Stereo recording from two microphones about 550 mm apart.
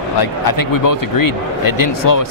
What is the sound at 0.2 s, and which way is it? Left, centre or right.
Speech, left.